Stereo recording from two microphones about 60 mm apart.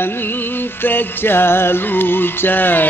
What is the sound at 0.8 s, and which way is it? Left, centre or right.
Music, left.